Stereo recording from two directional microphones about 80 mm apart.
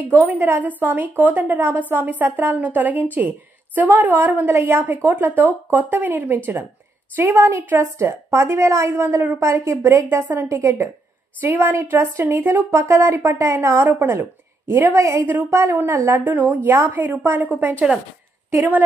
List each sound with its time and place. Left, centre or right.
0.0 s a woman's voice: right
4.5 s a woman's voice: right